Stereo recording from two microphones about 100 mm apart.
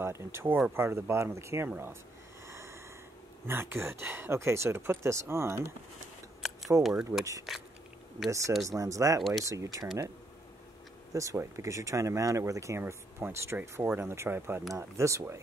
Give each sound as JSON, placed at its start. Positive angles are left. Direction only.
{"t": 0.0, "sound": "speech", "side_deg": -25}
{"t": 2.4, "sound": "snort", "side_deg": -30}
{"t": 3.4, "sound": "speech", "side_deg": -25}
{"t": 6.8, "sound": "speech", "side_deg": -5}
{"t": 8.3, "sound": "speech", "side_deg": -30}
{"t": 11.1, "sound": "speech", "side_deg": -30}